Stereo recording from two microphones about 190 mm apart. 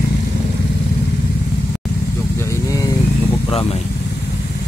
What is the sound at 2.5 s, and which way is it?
Vehicle, 15° left (ahead or behind).